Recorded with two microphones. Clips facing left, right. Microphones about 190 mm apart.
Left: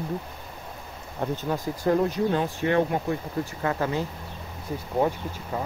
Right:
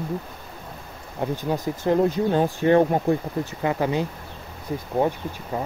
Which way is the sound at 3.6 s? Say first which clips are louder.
Right 4 dB; 15° right (ahead or behind).